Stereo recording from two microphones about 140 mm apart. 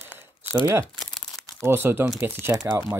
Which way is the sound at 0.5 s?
15° right (ahead or behind).